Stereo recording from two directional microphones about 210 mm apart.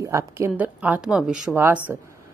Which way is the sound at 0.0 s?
15° right (ahead or behind).